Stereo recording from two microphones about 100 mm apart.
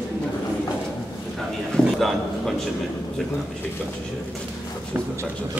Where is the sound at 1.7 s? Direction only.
Centre (ahead or behind).